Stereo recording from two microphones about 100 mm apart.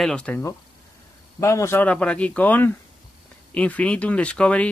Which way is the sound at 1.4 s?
30° left (ahead or behind).